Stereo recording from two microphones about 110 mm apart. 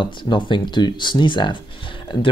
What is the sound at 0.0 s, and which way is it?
Speech, 45° left (ahead or behind).